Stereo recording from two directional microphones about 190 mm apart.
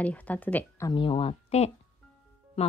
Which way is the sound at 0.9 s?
25° left (ahead or behind).